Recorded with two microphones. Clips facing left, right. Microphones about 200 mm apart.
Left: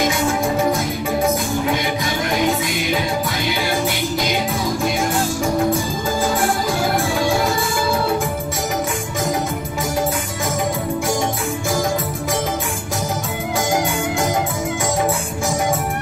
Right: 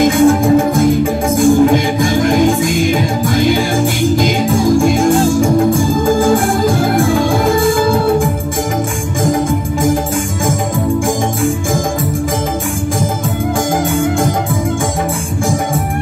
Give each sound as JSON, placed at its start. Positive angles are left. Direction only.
{"t": 0.0, "sound": "music", "side_deg": -50}